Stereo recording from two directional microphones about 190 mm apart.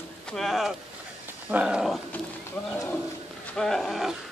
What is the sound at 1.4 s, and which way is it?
Dog, 5° right (ahead or behind).